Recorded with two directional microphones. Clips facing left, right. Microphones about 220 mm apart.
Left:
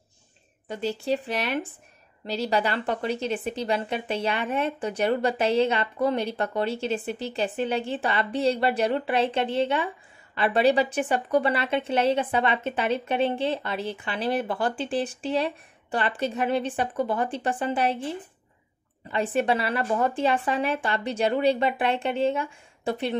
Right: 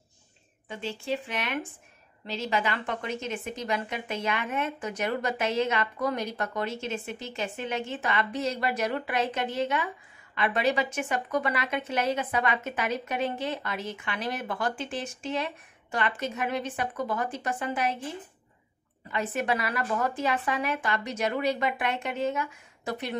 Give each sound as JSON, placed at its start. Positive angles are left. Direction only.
{"t": 0.7, "sound": "a woman's voice", "side_deg": 40}